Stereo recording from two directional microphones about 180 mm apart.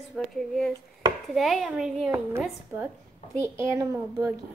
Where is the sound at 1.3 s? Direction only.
Centre (ahead or behind).